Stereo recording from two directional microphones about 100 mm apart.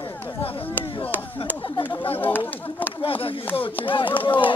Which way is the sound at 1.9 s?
50° left (ahead or behind).